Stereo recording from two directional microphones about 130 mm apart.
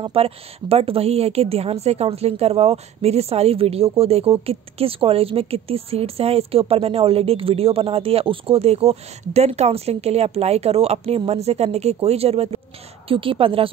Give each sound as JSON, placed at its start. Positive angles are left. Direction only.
{"t": 0.0, "sound": "speech", "side_deg": -50}